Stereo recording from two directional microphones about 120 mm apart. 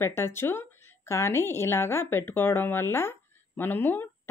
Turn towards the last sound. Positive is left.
turn(degrees=15)  # may be behind; listen again after turning